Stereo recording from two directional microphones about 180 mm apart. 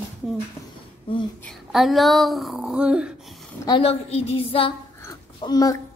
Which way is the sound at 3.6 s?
30° left (ahead or behind).